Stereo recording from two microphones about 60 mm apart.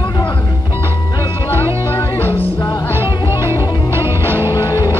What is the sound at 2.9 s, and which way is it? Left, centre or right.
Music, right.